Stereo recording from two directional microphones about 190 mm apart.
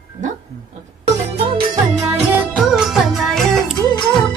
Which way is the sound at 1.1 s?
30° right (ahead or behind).